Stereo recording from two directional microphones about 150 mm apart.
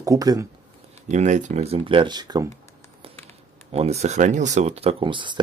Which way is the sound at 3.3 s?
45° right (ahead or behind).